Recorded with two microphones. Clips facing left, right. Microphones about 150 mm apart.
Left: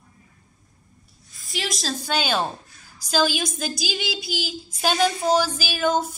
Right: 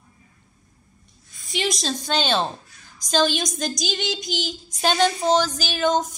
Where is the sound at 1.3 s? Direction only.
Centre (ahead or behind).